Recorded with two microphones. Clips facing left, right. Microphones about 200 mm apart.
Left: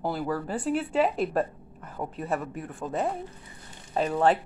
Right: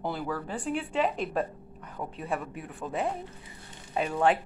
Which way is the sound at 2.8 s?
Centre (ahead or behind).